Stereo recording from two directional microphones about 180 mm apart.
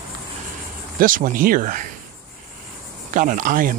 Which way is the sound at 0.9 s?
50° right (ahead or behind).